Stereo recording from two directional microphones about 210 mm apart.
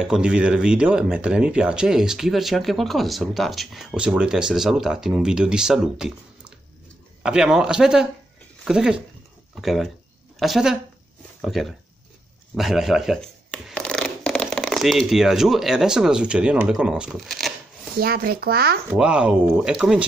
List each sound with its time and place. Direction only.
0.0 s speech: 5° right (ahead or behind)
17.9 s speech: 45° right (ahead or behind)
18.9 s speech: 5° right (ahead or behind)